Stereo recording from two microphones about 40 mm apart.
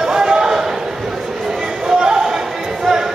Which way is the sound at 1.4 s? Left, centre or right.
Centre.